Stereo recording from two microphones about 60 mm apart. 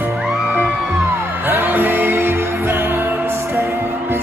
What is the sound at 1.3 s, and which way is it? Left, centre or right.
Music, right.